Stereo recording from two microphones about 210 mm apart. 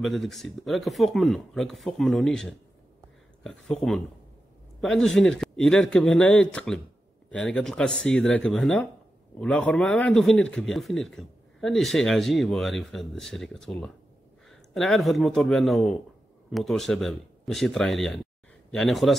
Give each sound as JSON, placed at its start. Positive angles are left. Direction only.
{"t": 0.0, "sound": "a man's voice", "side_deg": 0}
{"t": 4.7, "sound": "a man's voice", "side_deg": 0}